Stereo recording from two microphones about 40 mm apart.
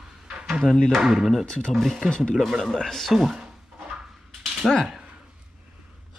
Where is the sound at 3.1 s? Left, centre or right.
Centre.